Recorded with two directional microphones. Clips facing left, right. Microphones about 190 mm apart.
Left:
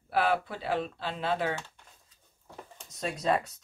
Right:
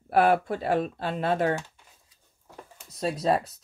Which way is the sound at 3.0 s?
35° right (ahead or behind).